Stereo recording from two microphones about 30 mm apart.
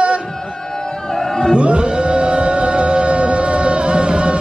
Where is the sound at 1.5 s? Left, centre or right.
Right.